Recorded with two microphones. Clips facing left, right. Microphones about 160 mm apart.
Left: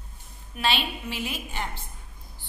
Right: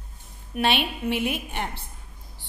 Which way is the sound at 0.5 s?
60° right (ahead or behind).